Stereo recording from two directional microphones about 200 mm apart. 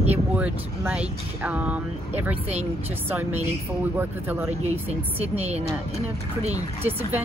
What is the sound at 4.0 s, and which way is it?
Speech, 10° right (ahead or behind).